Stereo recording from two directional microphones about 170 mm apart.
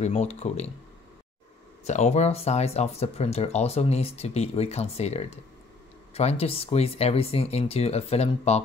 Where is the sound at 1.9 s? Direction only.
40° left (ahead or behind).